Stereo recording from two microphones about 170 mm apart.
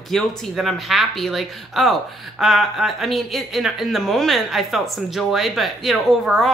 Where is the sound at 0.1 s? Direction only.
Centre (ahead or behind).